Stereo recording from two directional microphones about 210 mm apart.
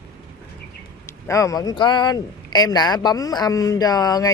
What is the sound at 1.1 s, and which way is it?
A man's voice, 15° left (ahead or behind).